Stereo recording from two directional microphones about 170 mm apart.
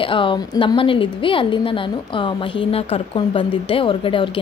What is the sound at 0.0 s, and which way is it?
A woman's voice, 30° left (ahead or behind).